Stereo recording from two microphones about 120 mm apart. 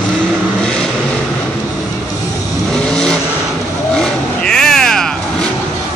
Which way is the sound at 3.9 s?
5° left (ahead or behind).